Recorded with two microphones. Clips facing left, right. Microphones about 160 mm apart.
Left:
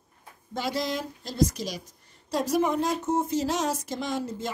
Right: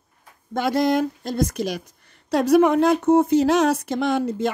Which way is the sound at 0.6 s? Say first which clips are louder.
Right 10 dB; 55° right (ahead or behind).